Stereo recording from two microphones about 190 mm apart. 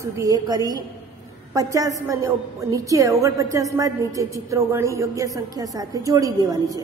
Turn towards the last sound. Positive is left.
turn(degrees=-20)  # may be behind; listen again after turning